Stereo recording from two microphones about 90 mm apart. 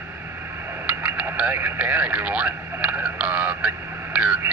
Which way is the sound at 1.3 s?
15° right (ahead or behind).